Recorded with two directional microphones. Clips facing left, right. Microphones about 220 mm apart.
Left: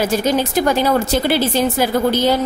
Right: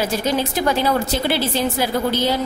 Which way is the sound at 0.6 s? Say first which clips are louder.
Left 3 dB; 50° left (ahead or behind).